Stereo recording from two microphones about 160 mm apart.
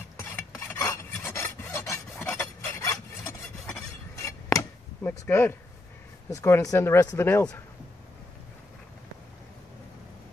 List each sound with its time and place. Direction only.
0.2 s filing: 15° left (ahead or behind)
4.1 s a sound: 20° left (ahead or behind)
5.2 s speech: 15° left (ahead or behind)